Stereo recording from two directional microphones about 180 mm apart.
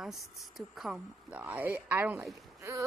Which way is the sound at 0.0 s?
Centre (ahead or behind).